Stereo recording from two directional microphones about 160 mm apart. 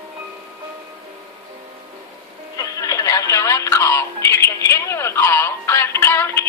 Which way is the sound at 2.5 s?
20° left (ahead or behind).